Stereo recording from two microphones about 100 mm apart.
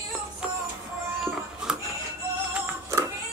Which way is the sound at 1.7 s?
10° right (ahead or behind).